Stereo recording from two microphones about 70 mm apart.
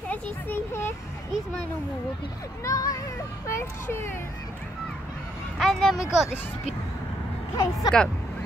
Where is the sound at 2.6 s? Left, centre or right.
Left.